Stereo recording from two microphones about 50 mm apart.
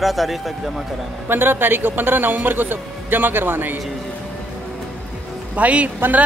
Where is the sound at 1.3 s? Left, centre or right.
Right.